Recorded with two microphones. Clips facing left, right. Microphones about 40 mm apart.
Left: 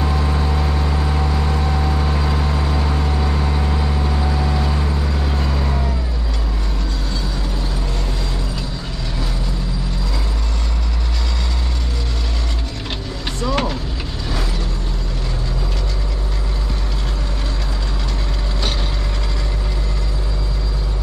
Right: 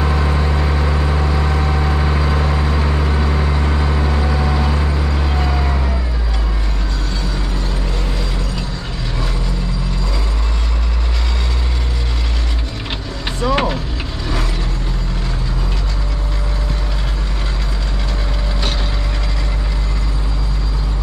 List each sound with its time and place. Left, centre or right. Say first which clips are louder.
0.0 s vehicle: right 2 dB; centre
13.4 s vehicle: right 4 dB; right